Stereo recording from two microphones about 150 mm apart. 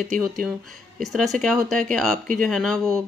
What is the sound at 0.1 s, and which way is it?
Speech, 65° right (ahead or behind).